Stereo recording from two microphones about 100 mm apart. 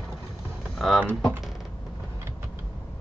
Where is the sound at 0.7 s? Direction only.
Centre (ahead or behind).